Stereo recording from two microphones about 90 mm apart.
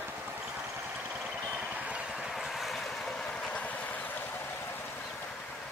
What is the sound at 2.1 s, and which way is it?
Boat, centre (ahead or behind).